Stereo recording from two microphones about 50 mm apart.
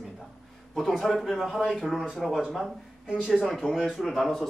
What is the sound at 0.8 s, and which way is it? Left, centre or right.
Speech, centre.